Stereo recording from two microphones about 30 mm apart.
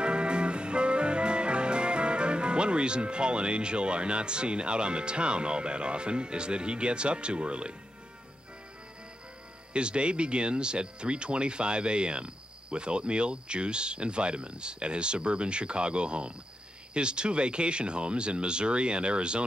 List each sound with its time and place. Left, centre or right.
0.0 s music: right
9.8 s speech: right